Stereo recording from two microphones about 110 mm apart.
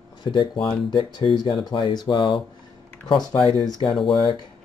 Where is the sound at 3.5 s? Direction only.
50° left (ahead or behind).